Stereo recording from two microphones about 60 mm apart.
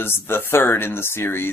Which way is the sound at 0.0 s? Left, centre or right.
Left.